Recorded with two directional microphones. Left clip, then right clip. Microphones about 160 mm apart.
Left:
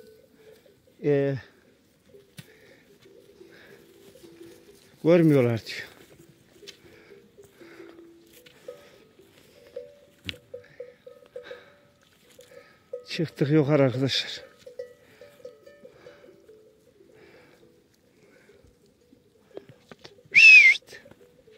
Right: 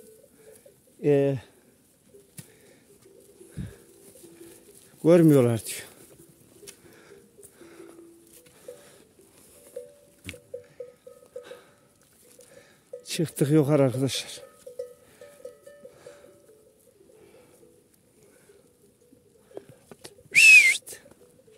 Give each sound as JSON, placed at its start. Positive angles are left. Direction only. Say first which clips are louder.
{"t": 1.0, "sound": "speech", "louder": "right 2 dB", "side_deg": -35}
{"t": 2.3, "sound": "bird", "louder": "left 3 dB", "side_deg": -15}
{"t": 3.5, "sound": "pigeon", "louder": "right 7 dB", "side_deg": -25}
{"t": 5.0, "sound": "speech", "louder": "right 1 dB", "side_deg": -35}
{"t": 6.8, "sound": "a sound", "louder": "even", "side_deg": -35}
{"t": 7.5, "sound": "music", "louder": "left 1 dB", "side_deg": -15}
{"t": 8.6, "sound": "a sound", "louder": "left 1 dB", "side_deg": -35}
{"t": 11.4, "sound": "a sound", "louder": "left 2 dB", "side_deg": -15}
{"t": 12.5, "sound": "speech", "louder": "left 4 dB", "side_deg": -25}
{"t": 15.9, "sound": "music", "louder": "right 1 dB", "side_deg": -25}
{"t": 17.2, "sound": "bird", "louder": "left 2 dB", "side_deg": 0}
{"t": 20.0, "sound": "a sound", "louder": "left 2 dB", "side_deg": -35}